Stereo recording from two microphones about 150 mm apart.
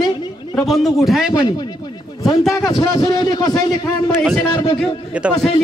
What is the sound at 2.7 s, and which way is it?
A man's voice, 25° left (ahead or behind).